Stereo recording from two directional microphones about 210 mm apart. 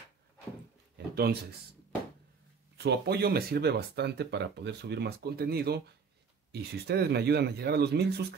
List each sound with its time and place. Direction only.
1.1 s speech: 50° right (ahead or behind)
2.8 s speech: 50° right (ahead or behind)